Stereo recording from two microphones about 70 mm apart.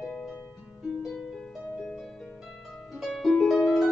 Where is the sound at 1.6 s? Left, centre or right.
Right.